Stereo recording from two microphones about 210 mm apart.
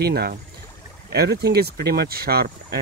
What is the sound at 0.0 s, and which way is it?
Speech, 50° right (ahead or behind).